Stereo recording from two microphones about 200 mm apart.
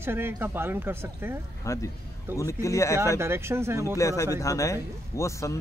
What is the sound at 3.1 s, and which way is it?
Speech, 10° right (ahead or behind).